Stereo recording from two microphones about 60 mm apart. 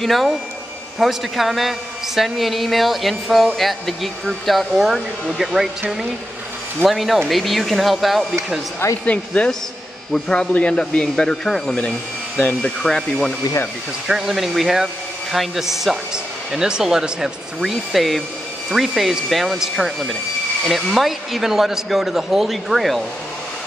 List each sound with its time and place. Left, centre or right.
0.0 s speech: centre
9.0 s speech: left
14.0 s speech: centre